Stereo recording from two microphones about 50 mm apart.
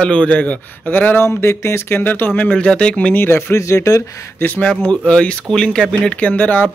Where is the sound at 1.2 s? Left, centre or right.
Left.